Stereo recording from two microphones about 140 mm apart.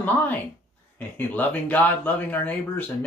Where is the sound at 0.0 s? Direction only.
10° left (ahead or behind).